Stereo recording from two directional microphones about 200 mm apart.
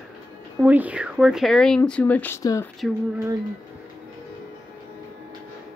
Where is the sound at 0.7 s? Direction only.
5° right (ahead or behind); by 2.7 s 15° left (ahead or behind).